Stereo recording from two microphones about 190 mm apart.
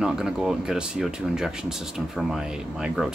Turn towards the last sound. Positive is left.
turn(degrees=-5)  # may be behind; listen again after turning